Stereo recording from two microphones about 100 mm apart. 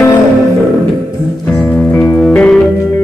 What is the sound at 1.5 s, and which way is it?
Music, 15° left (ahead or behind).